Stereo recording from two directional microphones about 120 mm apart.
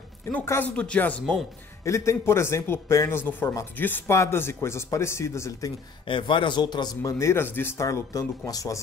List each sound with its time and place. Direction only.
0.3 s speech: 15° left (ahead or behind)
1.9 s a man's voice: 25° left (ahead or behind)
6.0 s a man's voice: 45° left (ahead or behind); by 8.8 s 30° left (ahead or behind)